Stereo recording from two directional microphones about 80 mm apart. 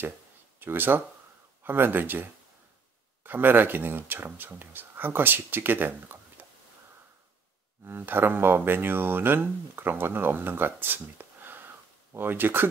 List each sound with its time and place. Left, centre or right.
0.6 s speech: right
3.3 s speech: right
7.8 s speech: right